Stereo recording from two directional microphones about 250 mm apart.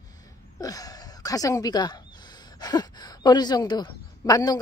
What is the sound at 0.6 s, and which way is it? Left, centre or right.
Speech, centre.